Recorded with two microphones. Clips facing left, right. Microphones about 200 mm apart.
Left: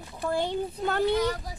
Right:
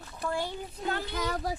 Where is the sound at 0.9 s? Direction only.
65° left (ahead or behind).